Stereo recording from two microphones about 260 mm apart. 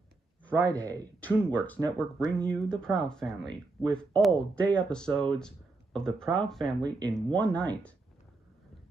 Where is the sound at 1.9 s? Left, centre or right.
Centre.